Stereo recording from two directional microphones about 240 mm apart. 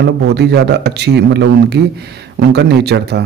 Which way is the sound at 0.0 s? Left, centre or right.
Right.